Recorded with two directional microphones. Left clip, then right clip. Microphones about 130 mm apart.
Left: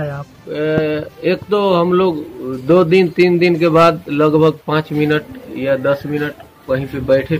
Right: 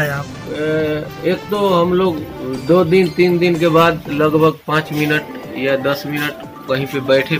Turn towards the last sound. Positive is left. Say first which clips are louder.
# even
turn(degrees=55)  # may be behind; listen again after turning